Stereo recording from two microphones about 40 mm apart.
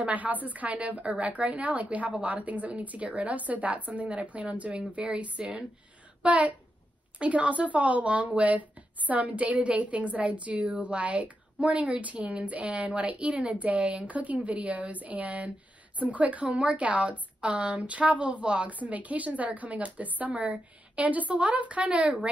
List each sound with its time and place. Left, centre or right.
0.0 s a woman's voice: right
4.7 s a woman's voice: right
6.2 s a woman's voice: right